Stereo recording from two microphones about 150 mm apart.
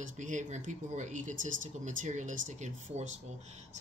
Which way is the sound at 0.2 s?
55° right (ahead or behind).